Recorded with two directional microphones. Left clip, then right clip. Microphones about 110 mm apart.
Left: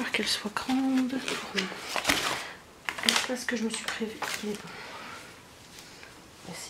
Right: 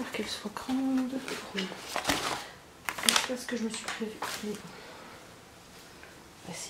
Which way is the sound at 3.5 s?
35° left (ahead or behind).